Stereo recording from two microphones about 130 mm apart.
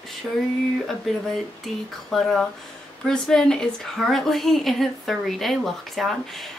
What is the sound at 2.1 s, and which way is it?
A woman's voice, centre (ahead or behind).